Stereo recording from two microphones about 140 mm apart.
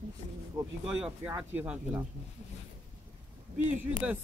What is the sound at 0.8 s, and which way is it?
Speech, 10° right (ahead or behind).